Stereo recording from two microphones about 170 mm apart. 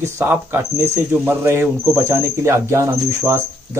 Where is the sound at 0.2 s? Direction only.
15° right (ahead or behind).